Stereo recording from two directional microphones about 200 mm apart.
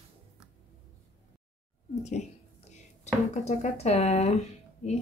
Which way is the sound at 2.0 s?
35° left (ahead or behind).